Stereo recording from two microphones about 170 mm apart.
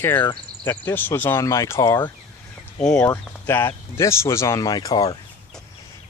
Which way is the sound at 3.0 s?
15° left (ahead or behind).